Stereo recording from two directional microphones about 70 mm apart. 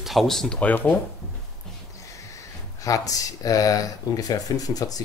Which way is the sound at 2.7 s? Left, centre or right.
Left.